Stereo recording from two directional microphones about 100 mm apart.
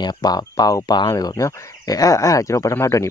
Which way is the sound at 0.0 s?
45° left (ahead or behind).